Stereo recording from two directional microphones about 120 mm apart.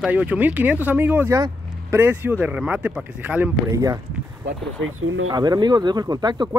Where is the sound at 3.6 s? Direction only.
25° right (ahead or behind).